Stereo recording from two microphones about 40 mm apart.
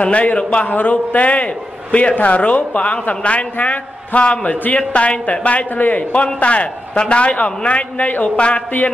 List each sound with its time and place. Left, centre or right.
0.0 s a man's voice: left
0.7 s a man's voice: left